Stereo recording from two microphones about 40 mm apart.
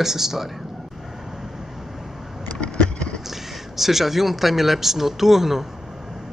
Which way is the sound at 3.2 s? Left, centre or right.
Centre.